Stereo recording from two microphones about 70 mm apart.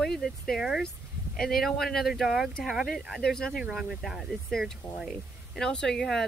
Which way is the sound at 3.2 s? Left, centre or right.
Centre.